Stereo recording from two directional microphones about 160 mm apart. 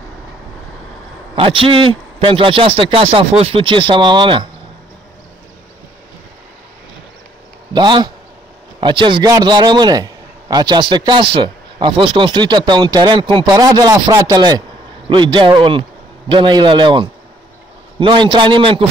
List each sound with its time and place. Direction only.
1.3 s a man's voice: 35° right (ahead or behind)
7.7 s a man's voice: 30° right (ahead or behind)